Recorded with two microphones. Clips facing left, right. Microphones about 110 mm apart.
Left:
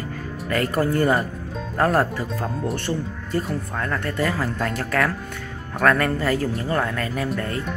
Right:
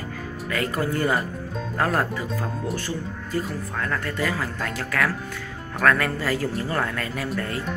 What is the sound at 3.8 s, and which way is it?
Speech, 30° left (ahead or behind).